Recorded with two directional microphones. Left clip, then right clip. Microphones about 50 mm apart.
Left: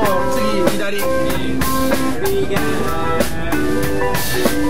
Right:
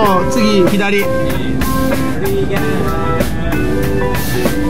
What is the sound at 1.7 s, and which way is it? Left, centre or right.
Music, centre.